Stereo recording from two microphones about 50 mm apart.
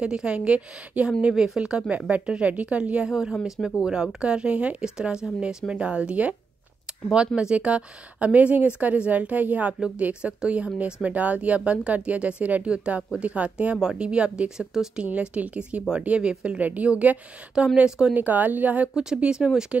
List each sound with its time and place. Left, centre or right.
0.0 s speech: centre
3.1 s speech: centre; by 4.8 s right
4.8 s speech: centre
6.9 s a sound: centre
7.3 s speech: right
17.8 s speech: centre
18.1 s speech: right
19.1 s speech: centre